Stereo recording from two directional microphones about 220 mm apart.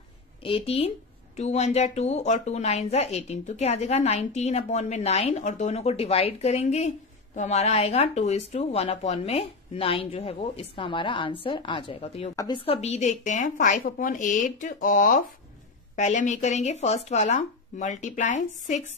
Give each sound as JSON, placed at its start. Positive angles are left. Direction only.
{"t": 0.4, "sound": "speech", "side_deg": 25}